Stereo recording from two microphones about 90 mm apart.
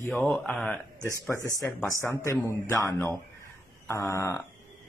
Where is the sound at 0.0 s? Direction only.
20° left (ahead or behind).